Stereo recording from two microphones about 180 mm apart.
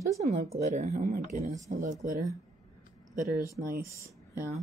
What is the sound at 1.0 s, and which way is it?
Speech, 50° right (ahead or behind).